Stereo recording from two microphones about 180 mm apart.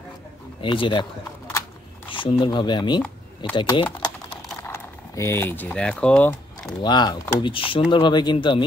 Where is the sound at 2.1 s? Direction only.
30° left (ahead or behind).